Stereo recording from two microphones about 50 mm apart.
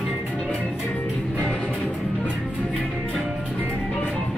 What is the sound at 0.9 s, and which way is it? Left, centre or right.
Music, left.